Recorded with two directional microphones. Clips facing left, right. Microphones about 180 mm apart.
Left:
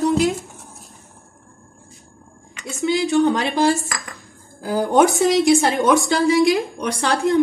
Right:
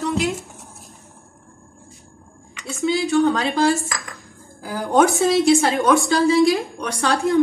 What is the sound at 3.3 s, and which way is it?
Speech, 20° left (ahead or behind).